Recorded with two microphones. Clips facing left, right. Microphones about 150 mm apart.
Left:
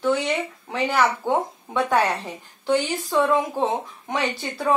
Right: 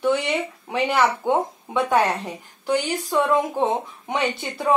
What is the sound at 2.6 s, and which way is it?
Speech, 15° right (ahead or behind).